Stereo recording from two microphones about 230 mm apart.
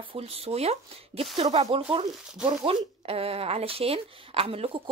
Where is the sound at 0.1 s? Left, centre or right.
Right.